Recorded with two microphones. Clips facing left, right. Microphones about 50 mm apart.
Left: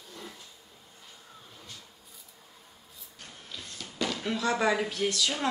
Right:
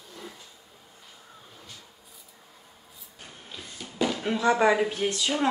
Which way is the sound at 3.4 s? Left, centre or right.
Centre.